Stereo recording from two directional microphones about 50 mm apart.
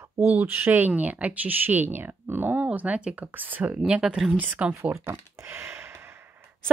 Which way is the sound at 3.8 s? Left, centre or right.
Centre.